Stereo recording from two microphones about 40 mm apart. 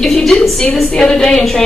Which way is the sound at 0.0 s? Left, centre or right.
Centre.